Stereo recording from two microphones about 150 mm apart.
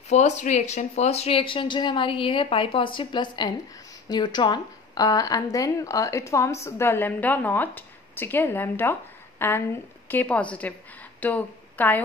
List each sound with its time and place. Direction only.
0.1 s a woman's voice: 50° left (ahead or behind); by 12.0 s 10° left (ahead or behind)